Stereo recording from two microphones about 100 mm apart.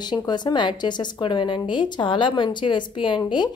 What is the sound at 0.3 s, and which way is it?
A woman's voice, 45° left (ahead or behind).